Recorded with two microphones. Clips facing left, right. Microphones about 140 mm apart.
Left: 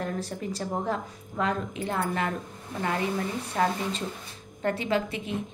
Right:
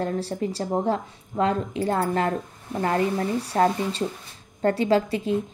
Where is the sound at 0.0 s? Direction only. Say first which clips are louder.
Right 6 dB; 30° right (ahead or behind).